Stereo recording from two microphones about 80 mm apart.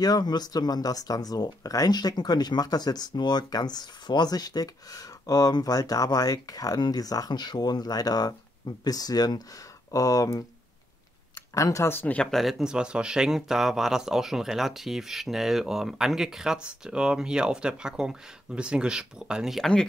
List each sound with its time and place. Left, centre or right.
0.0 s speech: left
11.5 s speech: left
11.9 s speech: left
12.2 s speech: centre